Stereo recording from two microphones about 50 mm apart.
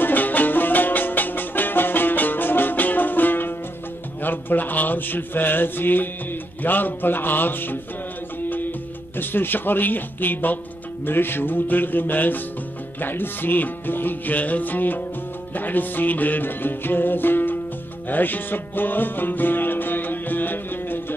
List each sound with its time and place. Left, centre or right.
0.0 s music: left
9.1 s music: left